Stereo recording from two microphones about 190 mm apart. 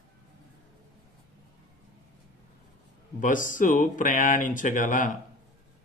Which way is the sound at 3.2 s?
45° left (ahead or behind).